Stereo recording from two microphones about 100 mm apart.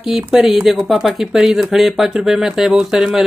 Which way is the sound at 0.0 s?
5° right (ahead or behind).